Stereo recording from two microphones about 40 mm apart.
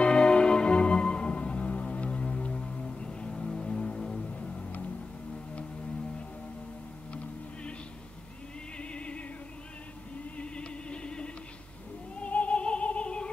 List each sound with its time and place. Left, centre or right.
0.0 s music: left
2.5 s music: centre
3.3 s a sound: centre
3.6 s vehicle: centre
4.2 s music: centre
8.7 s music: left
10.3 s music: left
12.2 s music: left